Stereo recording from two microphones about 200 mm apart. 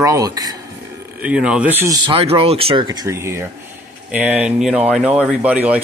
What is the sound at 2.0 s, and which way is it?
Speech, 25° right (ahead or behind).